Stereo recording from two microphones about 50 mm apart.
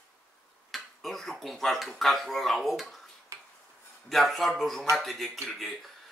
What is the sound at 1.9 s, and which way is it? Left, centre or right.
Speech, centre.